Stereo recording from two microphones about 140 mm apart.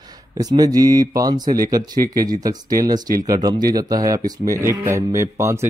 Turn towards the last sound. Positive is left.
turn(degrees=-20)  # may be behind; listen again after turning